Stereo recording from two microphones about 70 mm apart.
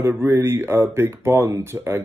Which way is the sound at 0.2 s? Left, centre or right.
Right.